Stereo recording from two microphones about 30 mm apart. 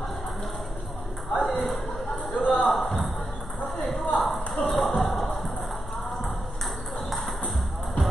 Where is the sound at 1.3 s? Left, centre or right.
Left.